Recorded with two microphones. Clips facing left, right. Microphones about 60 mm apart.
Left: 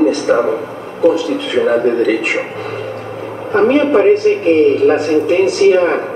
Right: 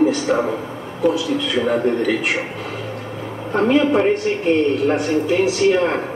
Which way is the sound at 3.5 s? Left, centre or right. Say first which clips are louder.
Left 5 dB; left.